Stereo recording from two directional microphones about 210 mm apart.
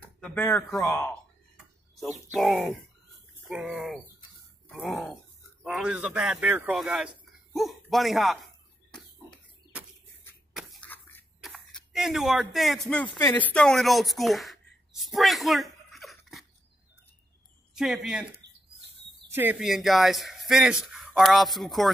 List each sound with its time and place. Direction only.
0.2 s speech: 10° left (ahead or behind)
2.3 s speech: centre (ahead or behind)
4.6 s a sound: centre (ahead or behind)
5.6 s a man's voice: centre (ahead or behind)
10.5 s a sound: 5° left (ahead or behind)
11.4 s speech: centre (ahead or behind)
17.7 s speech: centre (ahead or behind)
19.3 s speech: 10° right (ahead or behind)